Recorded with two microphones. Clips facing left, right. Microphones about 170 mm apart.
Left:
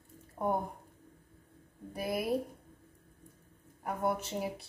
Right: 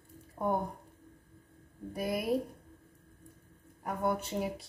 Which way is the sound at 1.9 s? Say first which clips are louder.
Right 1 dB; centre (ahead or behind).